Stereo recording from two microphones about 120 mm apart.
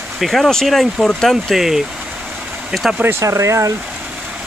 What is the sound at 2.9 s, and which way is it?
Speech, 20° right (ahead or behind).